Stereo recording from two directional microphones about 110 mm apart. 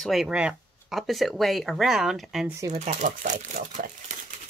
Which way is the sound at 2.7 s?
90° right.